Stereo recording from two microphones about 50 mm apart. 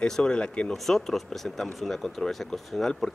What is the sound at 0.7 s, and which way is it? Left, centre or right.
A man's voice, centre.